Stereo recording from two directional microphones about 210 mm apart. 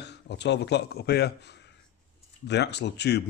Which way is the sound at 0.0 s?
55° left (ahead or behind).